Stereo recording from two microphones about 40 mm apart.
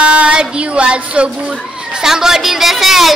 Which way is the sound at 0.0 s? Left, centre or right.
Right.